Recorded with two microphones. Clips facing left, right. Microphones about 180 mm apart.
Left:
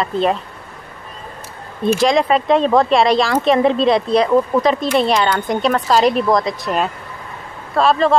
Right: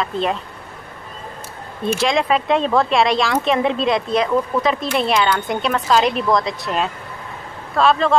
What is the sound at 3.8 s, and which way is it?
Speech, 35° left (ahead or behind).